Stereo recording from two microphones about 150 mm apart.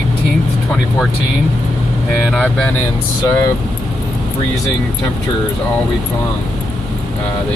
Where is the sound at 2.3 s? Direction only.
10° left (ahead or behind).